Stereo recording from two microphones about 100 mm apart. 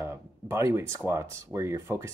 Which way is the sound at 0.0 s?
25° right (ahead or behind).